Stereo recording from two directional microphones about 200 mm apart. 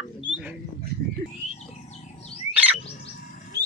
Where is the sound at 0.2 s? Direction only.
5° right (ahead or behind).